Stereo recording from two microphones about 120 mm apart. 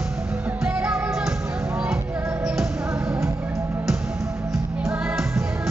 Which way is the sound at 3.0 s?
25° right (ahead or behind).